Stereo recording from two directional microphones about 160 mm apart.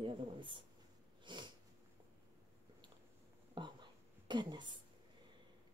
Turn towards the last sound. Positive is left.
turn(degrees=-30)  # may be behind; listen again after turning